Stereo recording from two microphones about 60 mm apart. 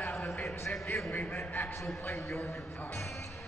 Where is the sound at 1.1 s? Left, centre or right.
Left.